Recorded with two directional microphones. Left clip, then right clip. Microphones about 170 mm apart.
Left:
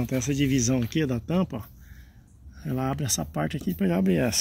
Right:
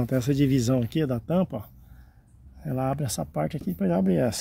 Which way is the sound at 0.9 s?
15° right (ahead or behind).